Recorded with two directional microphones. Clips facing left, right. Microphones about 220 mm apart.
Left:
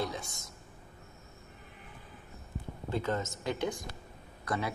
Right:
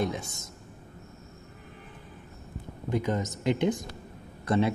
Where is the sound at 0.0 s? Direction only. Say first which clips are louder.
Right 6 dB; 20° right (ahead or behind).